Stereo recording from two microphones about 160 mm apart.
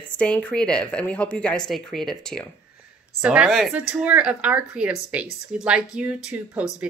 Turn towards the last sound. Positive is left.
turn(degrees=-10)  # may be behind; listen again after turning